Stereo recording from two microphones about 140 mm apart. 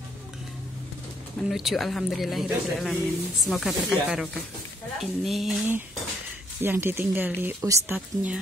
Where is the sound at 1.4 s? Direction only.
Centre (ahead or behind).